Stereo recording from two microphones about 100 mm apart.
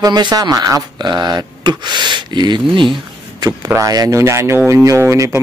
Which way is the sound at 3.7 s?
35° right (ahead or behind).